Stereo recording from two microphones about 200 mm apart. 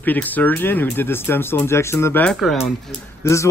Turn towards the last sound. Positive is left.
turn(degrees=15)  # may be behind; listen again after turning